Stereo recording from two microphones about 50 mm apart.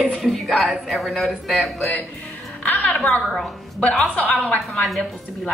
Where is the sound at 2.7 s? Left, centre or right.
Left.